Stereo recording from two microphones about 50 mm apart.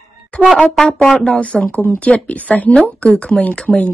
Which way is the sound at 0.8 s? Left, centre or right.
Centre.